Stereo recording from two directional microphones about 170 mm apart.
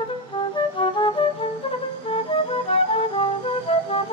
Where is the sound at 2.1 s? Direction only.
35° left (ahead or behind).